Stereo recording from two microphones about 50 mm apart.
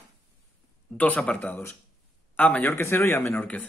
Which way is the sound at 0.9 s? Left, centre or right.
Left.